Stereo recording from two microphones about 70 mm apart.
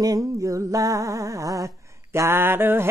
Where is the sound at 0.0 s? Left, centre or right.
Right.